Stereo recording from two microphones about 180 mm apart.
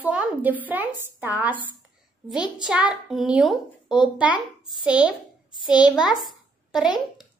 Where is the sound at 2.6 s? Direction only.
5° right (ahead or behind).